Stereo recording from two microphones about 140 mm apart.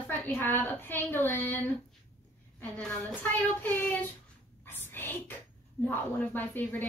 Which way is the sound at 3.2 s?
10° left (ahead or behind).